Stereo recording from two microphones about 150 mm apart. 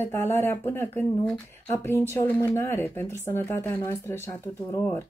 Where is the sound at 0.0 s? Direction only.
15° left (ahead or behind).